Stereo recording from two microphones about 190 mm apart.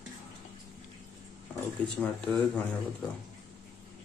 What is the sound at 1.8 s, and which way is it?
Speech, 5° left (ahead or behind).